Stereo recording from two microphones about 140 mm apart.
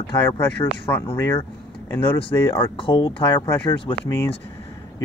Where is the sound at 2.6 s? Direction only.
40° left (ahead or behind).